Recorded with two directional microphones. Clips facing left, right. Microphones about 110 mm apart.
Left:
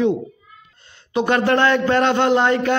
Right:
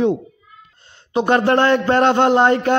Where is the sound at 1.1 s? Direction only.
35° right (ahead or behind).